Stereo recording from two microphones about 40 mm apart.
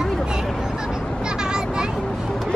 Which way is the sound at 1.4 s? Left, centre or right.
Centre.